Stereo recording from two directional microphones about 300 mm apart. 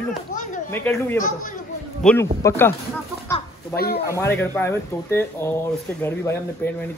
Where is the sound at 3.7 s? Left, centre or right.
Left.